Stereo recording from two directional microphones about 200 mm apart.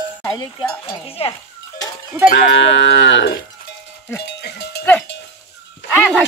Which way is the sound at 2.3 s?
65° left (ahead or behind).